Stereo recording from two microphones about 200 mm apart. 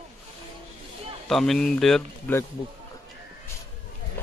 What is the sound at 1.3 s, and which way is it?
Speech, centre (ahead or behind).